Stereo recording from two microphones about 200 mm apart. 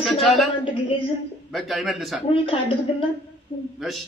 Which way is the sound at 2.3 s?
25° left (ahead or behind).